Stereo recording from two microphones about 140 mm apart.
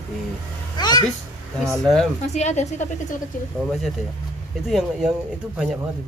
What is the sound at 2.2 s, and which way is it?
Speech, 55° left (ahead or behind).